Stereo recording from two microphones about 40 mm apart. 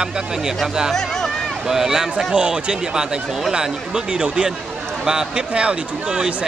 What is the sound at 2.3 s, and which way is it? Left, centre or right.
Speech, right.